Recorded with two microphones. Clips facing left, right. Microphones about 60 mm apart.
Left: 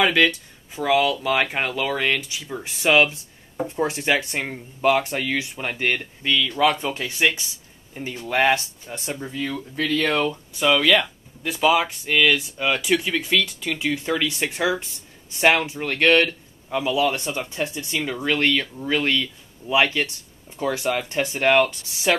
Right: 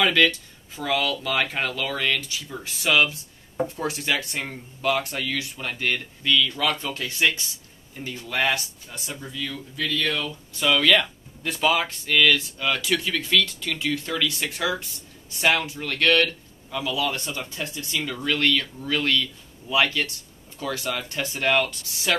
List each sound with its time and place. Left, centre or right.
0.0 s speech: centre; by 10.3 s left
10.5 s speech: centre